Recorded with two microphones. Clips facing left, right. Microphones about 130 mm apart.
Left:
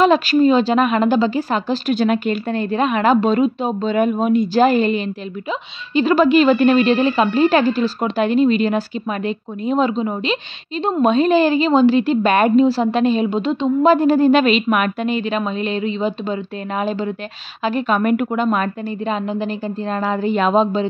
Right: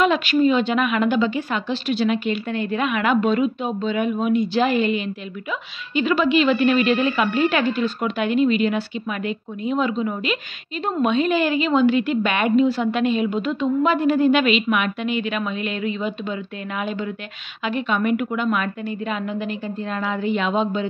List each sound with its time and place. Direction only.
0.0 s a woman's voice: 35° left (ahead or behind)